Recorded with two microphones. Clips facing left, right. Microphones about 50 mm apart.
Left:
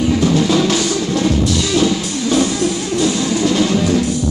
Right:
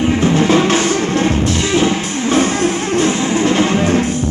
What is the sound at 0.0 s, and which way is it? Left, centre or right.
Music, right.